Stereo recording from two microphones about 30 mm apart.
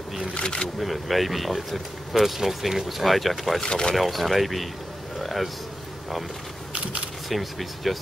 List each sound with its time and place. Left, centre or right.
0.3 s speech: left
0.7 s speech: centre
3.6 s speech: left
3.9 s speech: centre
7.2 s speech: centre